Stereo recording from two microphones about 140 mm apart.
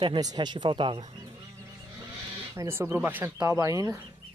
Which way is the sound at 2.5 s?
20° right (ahead or behind).